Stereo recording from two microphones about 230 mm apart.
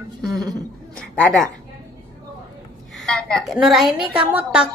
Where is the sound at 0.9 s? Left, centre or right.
Centre.